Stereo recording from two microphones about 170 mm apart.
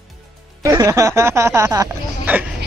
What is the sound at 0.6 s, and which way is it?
Speech, 20° right (ahead or behind).